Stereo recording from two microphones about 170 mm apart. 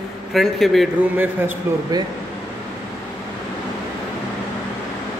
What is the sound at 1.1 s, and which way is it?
Speech, 10° right (ahead or behind).